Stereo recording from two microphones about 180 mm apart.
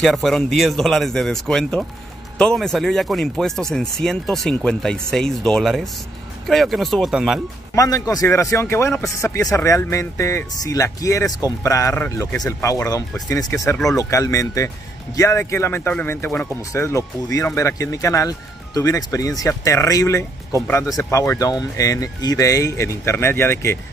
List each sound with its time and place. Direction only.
0.0 s speech: centre (ahead or behind)
7.7 s speech: 20° left (ahead or behind)